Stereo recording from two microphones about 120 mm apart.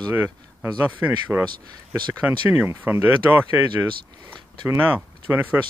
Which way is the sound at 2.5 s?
15° right (ahead or behind).